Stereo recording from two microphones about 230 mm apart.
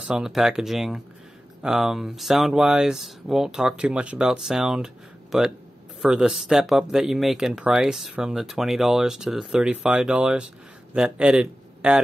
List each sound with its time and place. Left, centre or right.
0.1 s a man's voice: centre